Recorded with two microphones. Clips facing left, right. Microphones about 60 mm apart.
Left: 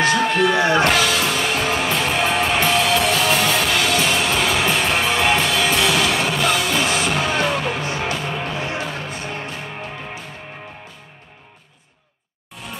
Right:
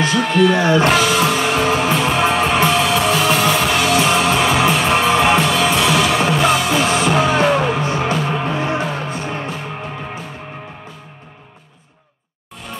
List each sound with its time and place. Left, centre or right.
0.0 s a sound: left
0.5 s speech: right
0.8 s music: centre
1.7 s music: centre